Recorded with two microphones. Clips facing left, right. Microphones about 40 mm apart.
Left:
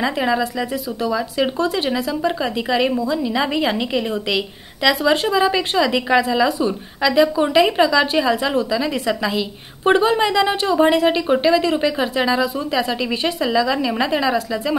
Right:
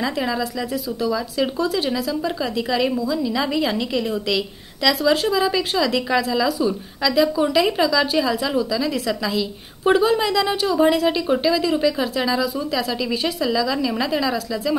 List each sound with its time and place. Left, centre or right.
0.0 s a woman's voice: left